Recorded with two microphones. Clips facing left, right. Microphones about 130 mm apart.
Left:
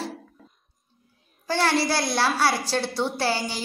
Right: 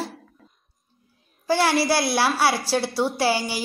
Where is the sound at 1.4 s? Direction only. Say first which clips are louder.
Right 3 dB; 10° right (ahead or behind).